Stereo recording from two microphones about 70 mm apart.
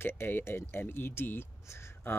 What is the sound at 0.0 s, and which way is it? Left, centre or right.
Speech, left.